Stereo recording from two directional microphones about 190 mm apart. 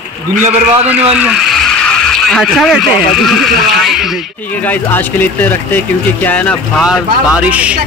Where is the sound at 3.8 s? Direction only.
Centre (ahead or behind).